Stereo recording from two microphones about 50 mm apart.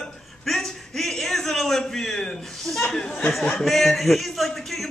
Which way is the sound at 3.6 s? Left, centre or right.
Centre.